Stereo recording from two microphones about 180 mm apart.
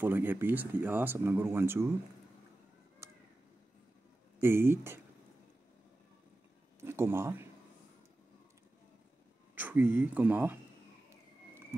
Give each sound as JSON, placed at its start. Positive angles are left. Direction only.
{"t": 0.0, "sound": "speech", "side_deg": -10}
{"t": 3.0, "sound": "a sound", "side_deg": -15}
{"t": 4.4, "sound": "speech", "side_deg": -15}
{"t": 6.8, "sound": "speech", "side_deg": -15}
{"t": 9.6, "sound": "speech", "side_deg": -10}